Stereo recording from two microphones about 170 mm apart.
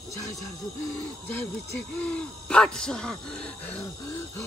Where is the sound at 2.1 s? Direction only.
5° left (ahead or behind).